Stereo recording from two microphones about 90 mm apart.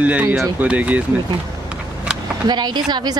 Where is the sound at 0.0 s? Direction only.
15° right (ahead or behind).